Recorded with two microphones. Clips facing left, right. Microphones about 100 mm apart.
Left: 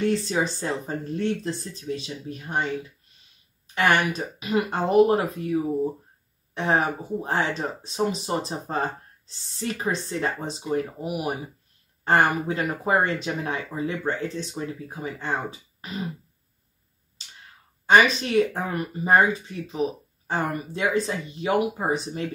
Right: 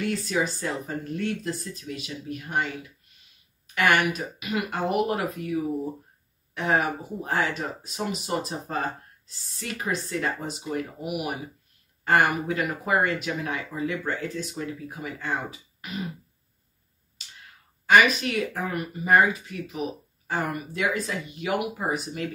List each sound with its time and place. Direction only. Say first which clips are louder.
0.0 s speech: left 3 dB; 30° left (ahead or behind)
3.7 s speech: left 1 dB; 35° left (ahead or behind)
17.4 s speech: left 1 dB; 30° left (ahead or behind)